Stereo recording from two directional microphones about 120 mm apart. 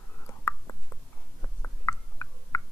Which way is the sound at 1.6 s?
25° left (ahead or behind).